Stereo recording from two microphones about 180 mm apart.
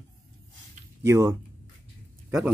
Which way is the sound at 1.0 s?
15° right (ahead or behind).